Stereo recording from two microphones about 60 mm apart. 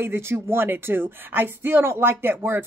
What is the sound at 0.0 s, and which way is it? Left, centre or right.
Speech, right.